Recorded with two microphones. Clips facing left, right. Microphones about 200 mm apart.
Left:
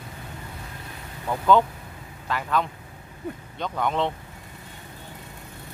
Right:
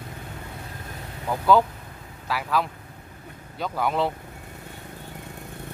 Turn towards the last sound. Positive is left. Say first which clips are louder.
# right 1 dB
turn(degrees=-5)  # may be behind; listen again after turning